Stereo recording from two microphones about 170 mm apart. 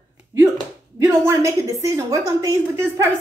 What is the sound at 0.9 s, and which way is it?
A woman's voice, 15° right (ahead or behind).